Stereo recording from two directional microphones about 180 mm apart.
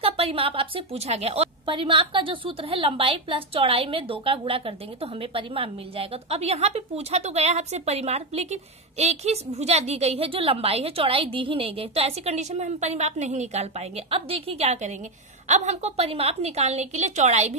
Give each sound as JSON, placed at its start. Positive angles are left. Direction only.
{"t": 0.0, "sound": "a woman's voice", "side_deg": -30}